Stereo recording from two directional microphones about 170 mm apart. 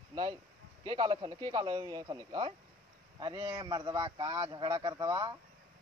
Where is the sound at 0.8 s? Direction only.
25° right (ahead or behind).